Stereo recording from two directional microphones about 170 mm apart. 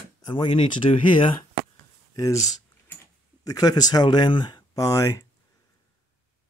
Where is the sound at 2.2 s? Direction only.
20° left (ahead or behind).